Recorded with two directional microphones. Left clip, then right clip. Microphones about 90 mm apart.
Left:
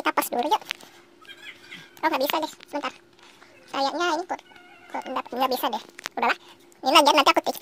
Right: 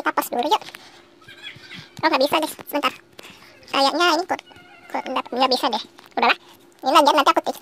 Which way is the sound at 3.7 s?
5° right (ahead or behind).